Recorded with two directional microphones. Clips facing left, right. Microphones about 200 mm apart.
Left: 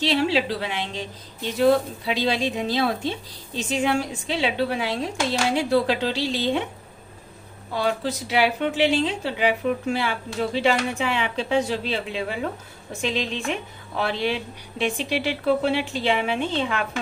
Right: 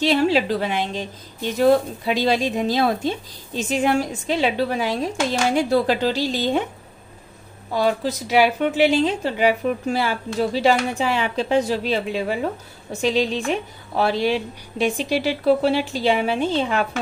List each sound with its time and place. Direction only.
0.0 s a woman's voice: 45° right (ahead or behind)
2.0 s a woman's voice: 45° right (ahead or behind)
7.7 s a woman's voice: 40° right (ahead or behind)